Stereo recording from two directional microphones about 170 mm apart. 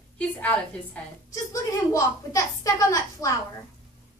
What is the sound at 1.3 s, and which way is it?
A woman's voice, 20° left (ahead or behind).